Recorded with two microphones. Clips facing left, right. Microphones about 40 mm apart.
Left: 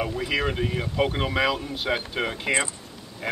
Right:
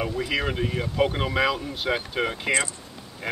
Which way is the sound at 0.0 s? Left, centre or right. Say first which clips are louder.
Even; centre.